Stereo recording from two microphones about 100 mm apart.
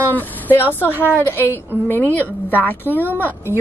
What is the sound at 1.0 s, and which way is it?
A woman's voice, 20° left (ahead or behind).